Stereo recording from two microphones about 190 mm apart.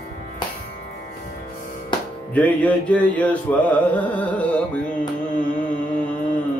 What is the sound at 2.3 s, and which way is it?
Carnatic music, 10° left (ahead or behind).